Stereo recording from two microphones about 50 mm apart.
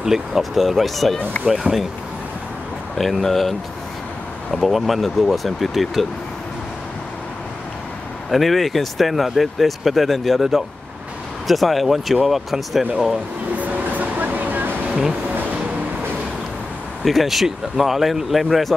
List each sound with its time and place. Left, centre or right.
0.0 s speech: centre
3.0 s speech: centre
8.3 s speech: centre
13.6 s music: right
17.0 s speech: centre